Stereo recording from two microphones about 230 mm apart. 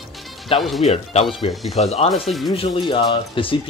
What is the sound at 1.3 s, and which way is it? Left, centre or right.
Speech, centre.